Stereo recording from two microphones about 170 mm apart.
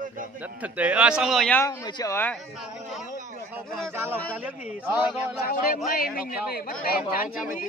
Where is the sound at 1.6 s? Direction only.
20° left (ahead or behind).